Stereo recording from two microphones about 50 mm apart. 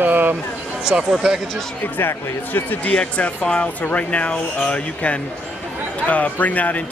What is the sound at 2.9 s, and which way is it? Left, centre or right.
Speech, left.